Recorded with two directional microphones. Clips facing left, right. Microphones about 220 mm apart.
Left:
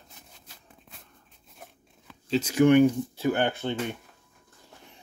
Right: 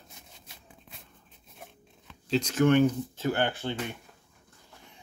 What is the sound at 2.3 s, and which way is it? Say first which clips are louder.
Speech: left 3 dB; 5° left (ahead or behind).